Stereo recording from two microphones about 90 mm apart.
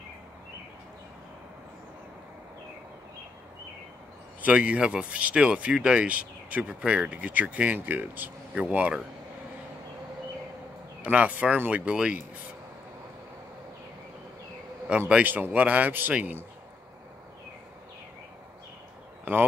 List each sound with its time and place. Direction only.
4.4 s speech: 15° right (ahead or behind)
11.0 s speech: 15° right (ahead or behind)
14.9 s speech: 10° right (ahead or behind)